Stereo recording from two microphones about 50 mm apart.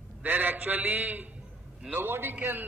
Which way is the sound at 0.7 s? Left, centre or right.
Right.